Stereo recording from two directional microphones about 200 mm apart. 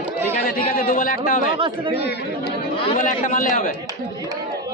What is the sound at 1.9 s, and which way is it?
Speech, 55° left (ahead or behind).